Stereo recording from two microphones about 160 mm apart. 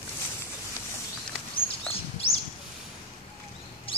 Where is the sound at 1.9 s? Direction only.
35° left (ahead or behind).